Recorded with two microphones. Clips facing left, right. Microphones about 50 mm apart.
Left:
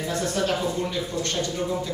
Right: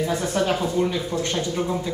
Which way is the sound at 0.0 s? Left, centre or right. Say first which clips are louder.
Right 3 dB; centre.